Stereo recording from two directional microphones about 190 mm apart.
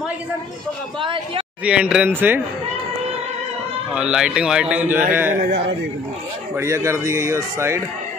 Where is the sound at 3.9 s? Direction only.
5° right (ahead or behind).